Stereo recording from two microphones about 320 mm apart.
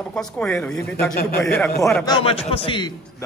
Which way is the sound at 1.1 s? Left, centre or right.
Left.